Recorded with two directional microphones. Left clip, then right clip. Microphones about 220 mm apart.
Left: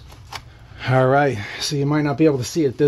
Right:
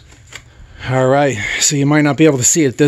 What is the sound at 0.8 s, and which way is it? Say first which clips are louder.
Speech: right 3 dB; 10° right (ahead or behind).